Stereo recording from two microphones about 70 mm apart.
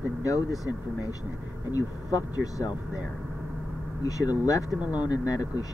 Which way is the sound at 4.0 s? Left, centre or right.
Left.